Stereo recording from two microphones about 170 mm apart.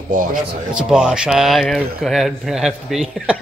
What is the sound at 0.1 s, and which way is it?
Speech, 50° right (ahead or behind).